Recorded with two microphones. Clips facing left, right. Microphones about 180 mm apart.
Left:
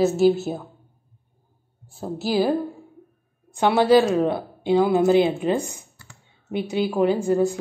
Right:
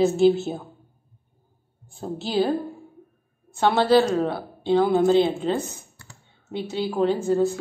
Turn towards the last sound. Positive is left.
turn(degrees=15)  # may be behind; listen again after turning